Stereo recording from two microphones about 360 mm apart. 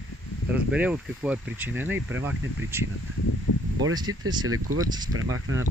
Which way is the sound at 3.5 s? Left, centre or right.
Left.